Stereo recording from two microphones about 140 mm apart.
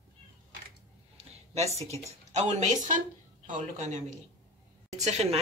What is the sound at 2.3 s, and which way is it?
A woman's voice, 55° right (ahead or behind).